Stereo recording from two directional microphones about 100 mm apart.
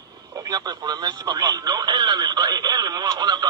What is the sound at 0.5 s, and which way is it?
Speech, 45° right (ahead or behind).